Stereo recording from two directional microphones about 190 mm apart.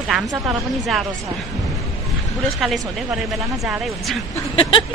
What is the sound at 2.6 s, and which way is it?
Speech, centre (ahead or behind).